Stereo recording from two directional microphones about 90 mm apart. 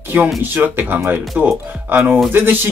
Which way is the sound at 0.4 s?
25° right (ahead or behind).